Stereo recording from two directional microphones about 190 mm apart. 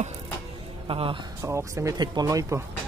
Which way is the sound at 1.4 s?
15° right (ahead or behind).